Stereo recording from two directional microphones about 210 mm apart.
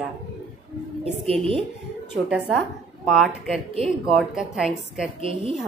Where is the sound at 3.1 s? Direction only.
Centre (ahead or behind).